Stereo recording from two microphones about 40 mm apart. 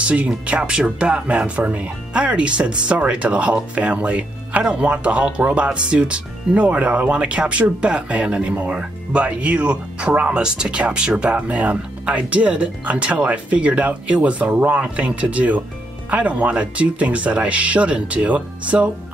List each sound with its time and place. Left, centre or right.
0.0 s speech: right